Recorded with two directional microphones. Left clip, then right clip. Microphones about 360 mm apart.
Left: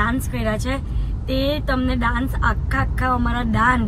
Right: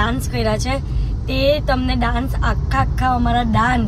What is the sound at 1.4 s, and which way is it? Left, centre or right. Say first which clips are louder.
Speech: right 6 dB; right.